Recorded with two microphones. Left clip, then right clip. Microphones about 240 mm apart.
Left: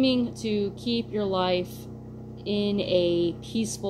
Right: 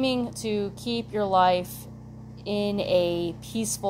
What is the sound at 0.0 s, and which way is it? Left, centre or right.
Speech, right.